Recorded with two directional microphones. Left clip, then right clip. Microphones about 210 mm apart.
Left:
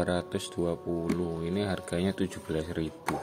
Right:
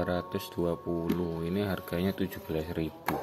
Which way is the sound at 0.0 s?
10° left (ahead or behind).